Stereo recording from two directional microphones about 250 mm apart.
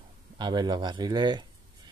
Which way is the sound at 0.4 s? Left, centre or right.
Centre.